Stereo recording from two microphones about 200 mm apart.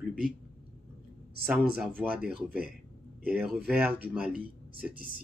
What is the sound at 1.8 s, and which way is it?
Speech, 5° right (ahead or behind).